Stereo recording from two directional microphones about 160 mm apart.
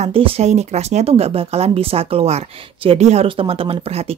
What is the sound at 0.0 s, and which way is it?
Speech, 35° right (ahead or behind).